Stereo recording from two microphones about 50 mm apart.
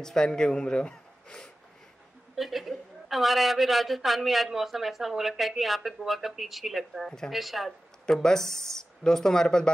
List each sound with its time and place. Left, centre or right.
0.0 s speech: centre
2.3 s a woman's voice: centre
8.2 s speech: centre